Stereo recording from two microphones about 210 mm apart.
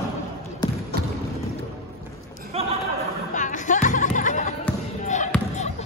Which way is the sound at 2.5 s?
30° right (ahead or behind).